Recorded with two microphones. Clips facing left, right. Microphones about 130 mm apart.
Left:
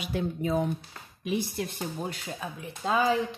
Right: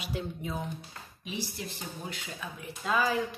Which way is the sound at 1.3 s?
55° left (ahead or behind).